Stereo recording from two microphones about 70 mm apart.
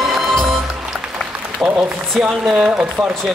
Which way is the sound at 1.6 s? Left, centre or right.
Centre.